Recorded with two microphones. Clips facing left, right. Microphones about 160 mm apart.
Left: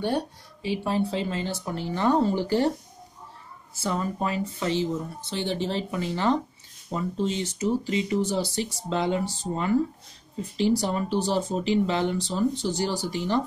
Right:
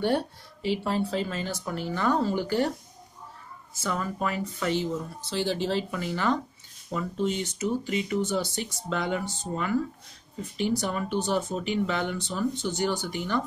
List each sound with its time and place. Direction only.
0.8 s speech: 20° left (ahead or behind)
3.7 s speech: 30° left (ahead or behind)